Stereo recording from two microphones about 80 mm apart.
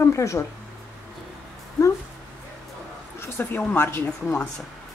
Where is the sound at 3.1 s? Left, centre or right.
Left.